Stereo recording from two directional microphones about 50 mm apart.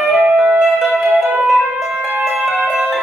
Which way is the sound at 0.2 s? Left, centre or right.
Right.